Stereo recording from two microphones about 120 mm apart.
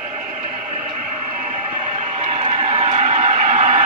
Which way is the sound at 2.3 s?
60° right (ahead or behind).